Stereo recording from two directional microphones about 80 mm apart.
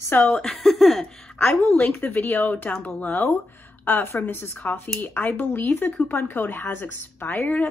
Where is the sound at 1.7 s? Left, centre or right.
Left.